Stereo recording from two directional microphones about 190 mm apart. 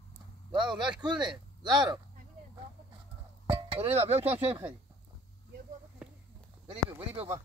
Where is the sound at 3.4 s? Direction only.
30° right (ahead or behind).